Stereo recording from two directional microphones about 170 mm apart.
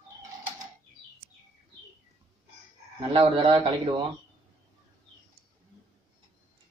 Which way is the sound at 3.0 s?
30° right (ahead or behind).